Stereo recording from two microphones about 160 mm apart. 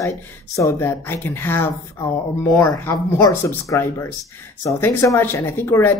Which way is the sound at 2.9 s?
20° left (ahead or behind).